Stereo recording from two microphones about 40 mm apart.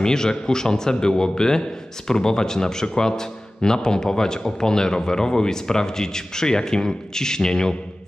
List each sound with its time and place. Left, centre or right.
0.0 s a man's voice: centre